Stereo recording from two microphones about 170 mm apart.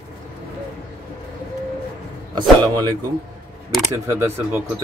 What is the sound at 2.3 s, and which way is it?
Speech, 25° right (ahead or behind).